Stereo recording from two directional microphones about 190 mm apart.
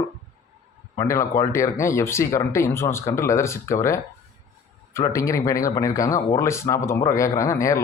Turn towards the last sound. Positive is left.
turn(degrees=15)  # may be behind; listen again after turning